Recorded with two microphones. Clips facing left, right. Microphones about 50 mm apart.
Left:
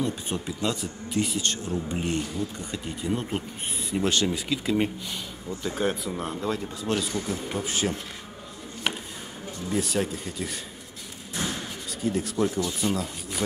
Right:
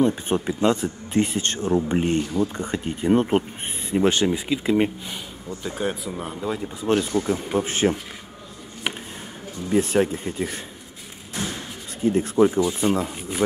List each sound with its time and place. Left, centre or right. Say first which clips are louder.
0.0 s speech: right 8 dB; right
4.0 s speech: right 5 dB; right
5.6 s speech: even; centre
6.8 s speech: right 6 dB; right
9.7 s speech: right 7 dB; right
12.0 s speech: right 8 dB; right